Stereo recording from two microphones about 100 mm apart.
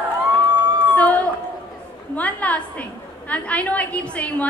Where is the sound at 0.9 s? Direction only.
15° left (ahead or behind).